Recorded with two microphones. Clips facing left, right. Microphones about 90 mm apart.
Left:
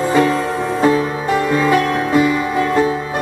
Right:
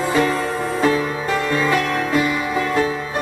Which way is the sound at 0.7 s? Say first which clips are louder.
Left 4 dB; 20° left (ahead or behind).